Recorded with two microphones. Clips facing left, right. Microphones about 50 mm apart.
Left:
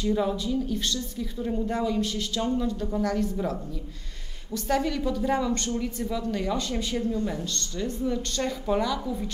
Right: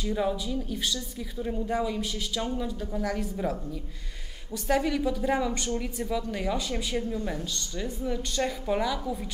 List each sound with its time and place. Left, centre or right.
0.0 s speech: centre
4.6 s speech: centre